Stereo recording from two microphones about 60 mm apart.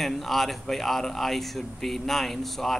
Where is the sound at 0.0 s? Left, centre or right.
Centre.